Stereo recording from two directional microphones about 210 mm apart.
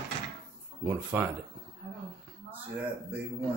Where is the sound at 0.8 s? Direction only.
10° right (ahead or behind).